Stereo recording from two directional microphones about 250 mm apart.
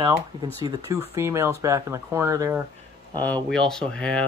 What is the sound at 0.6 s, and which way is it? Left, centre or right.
Speech, centre.